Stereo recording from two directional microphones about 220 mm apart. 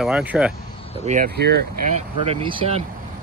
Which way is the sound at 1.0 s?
40° right (ahead or behind).